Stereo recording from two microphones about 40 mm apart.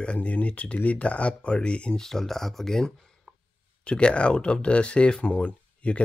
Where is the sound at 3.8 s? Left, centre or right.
Left.